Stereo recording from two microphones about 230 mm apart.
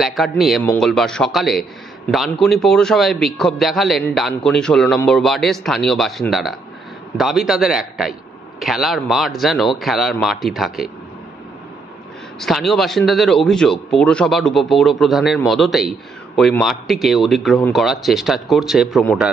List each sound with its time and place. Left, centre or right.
0.0 s a man's voice: centre
12.4 s a man's voice: centre